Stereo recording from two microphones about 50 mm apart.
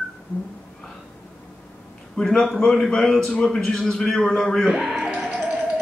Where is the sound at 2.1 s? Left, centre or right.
Centre.